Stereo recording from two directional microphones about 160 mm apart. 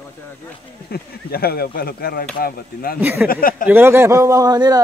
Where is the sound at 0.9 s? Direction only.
70° left (ahead or behind).